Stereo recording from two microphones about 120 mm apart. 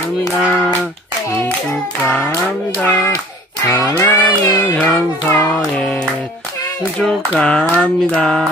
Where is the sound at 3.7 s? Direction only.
15° left (ahead or behind).